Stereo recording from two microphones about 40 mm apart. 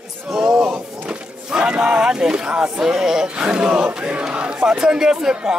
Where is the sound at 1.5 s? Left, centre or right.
Centre.